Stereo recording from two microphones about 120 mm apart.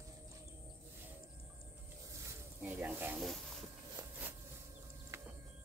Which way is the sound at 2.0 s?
25° right (ahead or behind).